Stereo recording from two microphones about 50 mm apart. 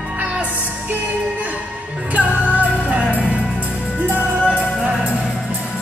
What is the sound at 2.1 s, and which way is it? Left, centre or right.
Music, right.